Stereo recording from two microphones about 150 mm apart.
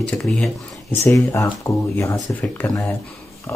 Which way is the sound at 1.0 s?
20° left (ahead or behind).